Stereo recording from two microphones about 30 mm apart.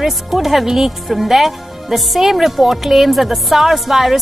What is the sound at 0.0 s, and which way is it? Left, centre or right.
Speech, centre.